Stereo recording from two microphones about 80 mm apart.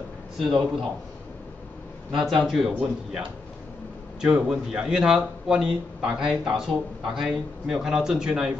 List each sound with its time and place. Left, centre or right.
0.4 s speech: centre
2.2 s speech: centre
4.2 s speech: centre